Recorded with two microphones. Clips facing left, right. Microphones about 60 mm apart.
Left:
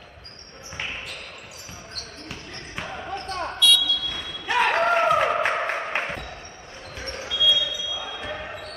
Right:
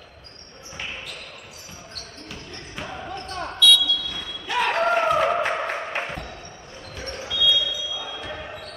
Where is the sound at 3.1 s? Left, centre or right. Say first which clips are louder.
Left 4 dB; left.